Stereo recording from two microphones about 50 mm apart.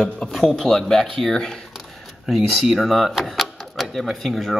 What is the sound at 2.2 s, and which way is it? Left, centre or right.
Speech, centre.